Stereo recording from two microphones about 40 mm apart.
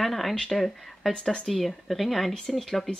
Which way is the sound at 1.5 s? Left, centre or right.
Centre.